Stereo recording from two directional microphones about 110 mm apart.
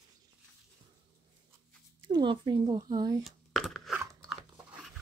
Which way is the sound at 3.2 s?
Centre (ahead or behind).